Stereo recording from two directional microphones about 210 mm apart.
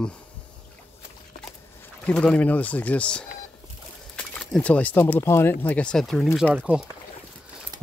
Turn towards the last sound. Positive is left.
turn(degrees=-5)  # may be behind; listen again after turning